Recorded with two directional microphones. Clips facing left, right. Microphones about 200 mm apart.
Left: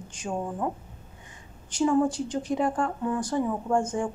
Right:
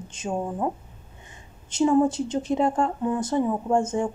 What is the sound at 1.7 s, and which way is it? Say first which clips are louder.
Speech: right 3 dB; 25° right (ahead or behind).